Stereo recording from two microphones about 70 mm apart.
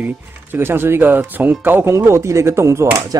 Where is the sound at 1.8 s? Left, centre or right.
Right.